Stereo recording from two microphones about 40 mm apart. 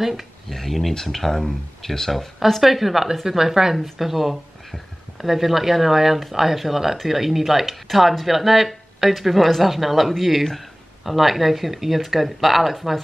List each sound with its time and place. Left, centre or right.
0.0 s speech: centre
0.5 s speech: centre